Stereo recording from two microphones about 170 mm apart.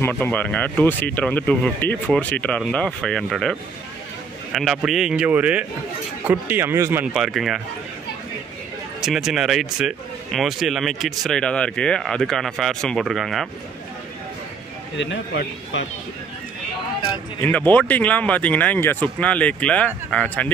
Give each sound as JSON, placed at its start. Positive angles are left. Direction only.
{"t": 0.2, "sound": "a man's voice", "side_deg": 10}
{"t": 7.2, "sound": "a man's voice", "side_deg": 0}
{"t": 9.0, "sound": "a man's voice", "side_deg": -5}
{"t": 15.0, "sound": "a man's voice", "side_deg": 90}
{"t": 17.4, "sound": "speech", "side_deg": 10}